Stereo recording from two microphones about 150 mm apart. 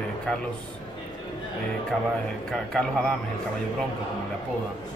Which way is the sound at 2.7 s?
5° left (ahead or behind).